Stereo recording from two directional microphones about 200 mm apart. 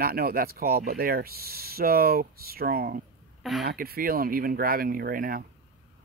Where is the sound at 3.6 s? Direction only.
50° right (ahead or behind).